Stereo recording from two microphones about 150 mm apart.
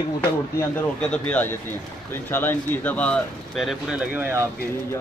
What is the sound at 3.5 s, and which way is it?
Speech, centre (ahead or behind).